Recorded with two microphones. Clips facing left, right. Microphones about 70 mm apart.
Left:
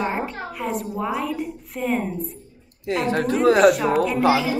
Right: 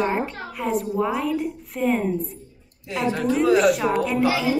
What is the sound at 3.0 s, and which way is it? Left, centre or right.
Speech, left.